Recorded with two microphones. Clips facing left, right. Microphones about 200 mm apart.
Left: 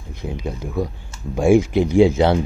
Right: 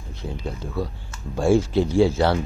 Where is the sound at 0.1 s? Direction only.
15° left (ahead or behind).